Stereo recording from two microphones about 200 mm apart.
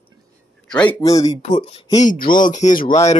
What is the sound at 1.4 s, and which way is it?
Speech, 35° left (ahead or behind).